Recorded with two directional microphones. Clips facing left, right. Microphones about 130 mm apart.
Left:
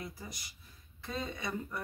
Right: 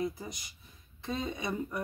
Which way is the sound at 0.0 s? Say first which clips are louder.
Right 9 dB; 20° right (ahead or behind).